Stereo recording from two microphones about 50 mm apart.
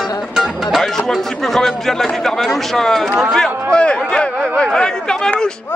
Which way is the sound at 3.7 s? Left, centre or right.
Centre.